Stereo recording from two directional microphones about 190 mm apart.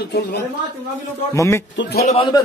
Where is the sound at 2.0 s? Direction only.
35° left (ahead or behind).